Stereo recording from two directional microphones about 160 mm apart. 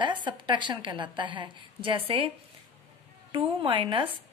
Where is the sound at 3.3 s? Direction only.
35° right (ahead or behind).